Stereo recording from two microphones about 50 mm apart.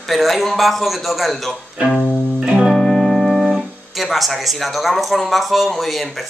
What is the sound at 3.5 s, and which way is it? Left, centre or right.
Speech, centre.